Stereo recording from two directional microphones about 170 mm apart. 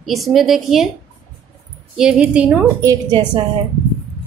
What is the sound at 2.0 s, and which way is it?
Speech, 5° right (ahead or behind).